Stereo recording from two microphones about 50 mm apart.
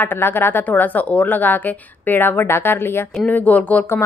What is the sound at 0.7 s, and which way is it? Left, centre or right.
A woman's voice, left.